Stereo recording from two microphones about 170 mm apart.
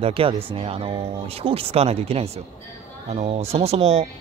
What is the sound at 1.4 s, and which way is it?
Speech, 35° right (ahead or behind).